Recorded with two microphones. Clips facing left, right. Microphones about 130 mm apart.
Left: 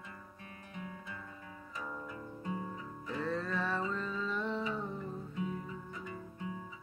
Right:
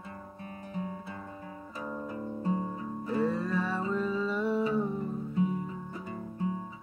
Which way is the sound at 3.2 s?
10° right (ahead or behind).